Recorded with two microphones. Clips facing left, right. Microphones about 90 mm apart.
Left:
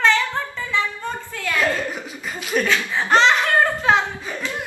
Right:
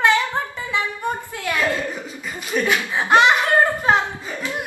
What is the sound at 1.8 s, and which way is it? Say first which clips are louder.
Chuckle: even; 15° left (ahead or behind).